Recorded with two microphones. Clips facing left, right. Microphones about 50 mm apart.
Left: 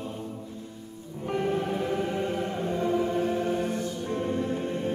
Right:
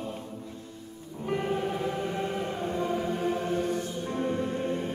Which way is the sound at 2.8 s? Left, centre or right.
Centre.